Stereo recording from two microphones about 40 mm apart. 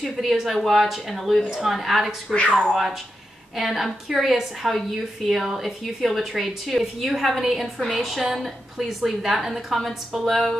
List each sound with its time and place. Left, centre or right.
0.0 s a woman's voice: centre
2.3 s speech: left
3.5 s a woman's voice: centre